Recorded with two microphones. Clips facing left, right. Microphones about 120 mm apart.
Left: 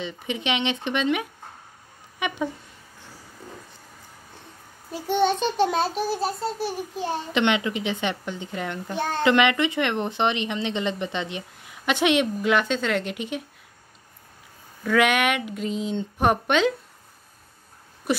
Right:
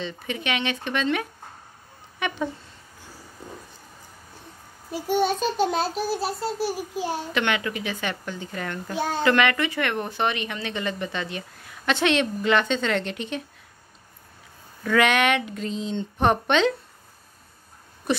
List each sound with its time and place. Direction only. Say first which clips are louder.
0.0 s a woman's voice: left 1 dB; 15° left (ahead or behind)
4.9 s a child's voice: left 1 dB; 10° right (ahead or behind)
7.3 s a woman's voice: left 5 dB; 20° left (ahead or behind)
8.9 s a child's voice: right 1 dB; 10° right (ahead or behind)
9.2 s a woman's voice: left 2 dB; 20° left (ahead or behind)
14.8 s speech: even; 5° left (ahead or behind)